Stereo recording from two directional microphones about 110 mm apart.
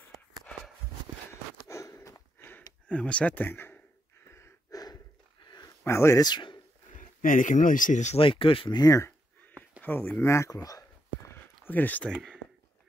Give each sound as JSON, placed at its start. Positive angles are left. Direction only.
{"t": 1.7, "sound": "a sound", "side_deg": 25}
{"t": 2.9, "sound": "speech", "side_deg": 10}
{"t": 4.3, "sound": "gasp", "side_deg": 30}
{"t": 5.4, "sound": "a sound", "side_deg": 40}
{"t": 5.9, "sound": "speech", "side_deg": 25}
{"t": 6.2, "sound": "speech", "side_deg": 45}
{"t": 7.5, "sound": "speech", "side_deg": 90}
{"t": 8.2, "sound": "speech", "side_deg": 55}
{"t": 9.8, "sound": "a sound", "side_deg": 20}
{"t": 11.6, "sound": "speech", "side_deg": 15}